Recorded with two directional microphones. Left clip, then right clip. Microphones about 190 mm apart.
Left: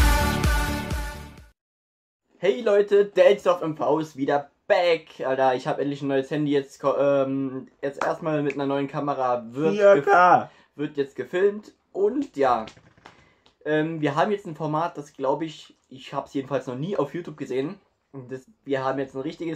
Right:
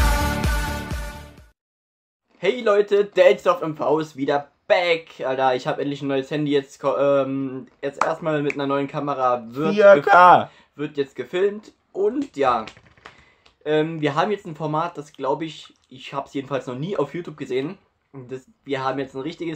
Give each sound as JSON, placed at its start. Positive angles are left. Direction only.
{"t": 2.4, "sound": "speech", "side_deg": 0}
{"t": 9.8, "sound": "a man's voice", "side_deg": -45}
{"t": 10.5, "sound": "speech", "side_deg": 0}
{"t": 13.7, "sound": "speech", "side_deg": 0}